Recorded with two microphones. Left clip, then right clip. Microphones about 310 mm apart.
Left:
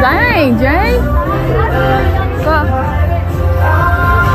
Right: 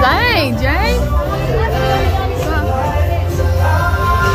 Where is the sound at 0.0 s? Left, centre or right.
Centre.